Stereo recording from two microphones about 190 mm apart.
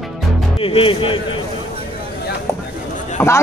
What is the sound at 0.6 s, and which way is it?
Speech, 30° left (ahead or behind).